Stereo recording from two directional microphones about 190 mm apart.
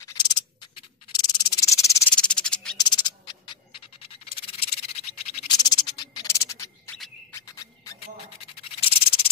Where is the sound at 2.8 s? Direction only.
25° left (ahead or behind).